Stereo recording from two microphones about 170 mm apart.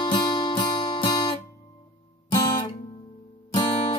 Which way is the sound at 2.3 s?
25° left (ahead or behind).